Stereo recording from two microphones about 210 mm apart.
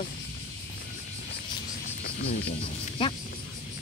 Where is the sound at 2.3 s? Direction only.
30° left (ahead or behind).